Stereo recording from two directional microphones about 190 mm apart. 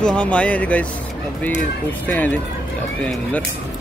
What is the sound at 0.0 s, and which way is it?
Speech, 5° left (ahead or behind).